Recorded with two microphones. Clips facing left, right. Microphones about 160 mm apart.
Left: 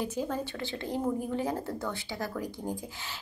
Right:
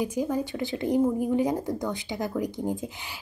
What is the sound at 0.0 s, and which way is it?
Speech, 10° right (ahead or behind).